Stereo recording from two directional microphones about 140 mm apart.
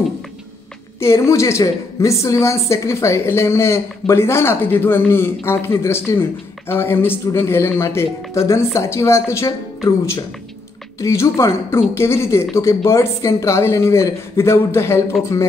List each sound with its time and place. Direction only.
0.9 s a woman's voice: 20° left (ahead or behind)